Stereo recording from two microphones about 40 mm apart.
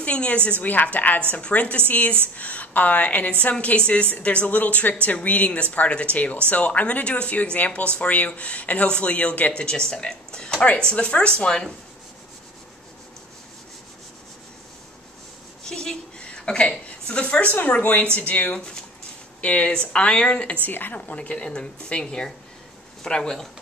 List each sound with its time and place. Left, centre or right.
0.0 s a woman's voice: left
0.6 s a woman's voice: left
9.5 s speech: left
15.6 s a sound: centre
17.6 s speech: left
20.6 s a woman's voice: left
20.9 s speech: left